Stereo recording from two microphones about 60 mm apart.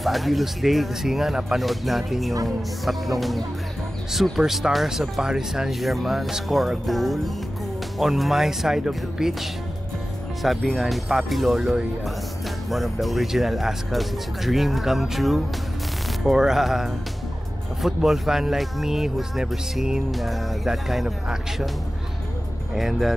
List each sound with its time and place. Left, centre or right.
0.0 s speech: centre
10.4 s speech: centre
22.8 s speech: centre